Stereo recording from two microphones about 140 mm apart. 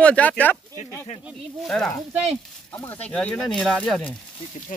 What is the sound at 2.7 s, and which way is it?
A man's voice, 15° left (ahead or behind).